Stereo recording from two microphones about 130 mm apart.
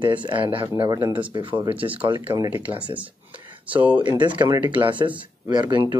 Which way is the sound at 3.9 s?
35° right (ahead or behind).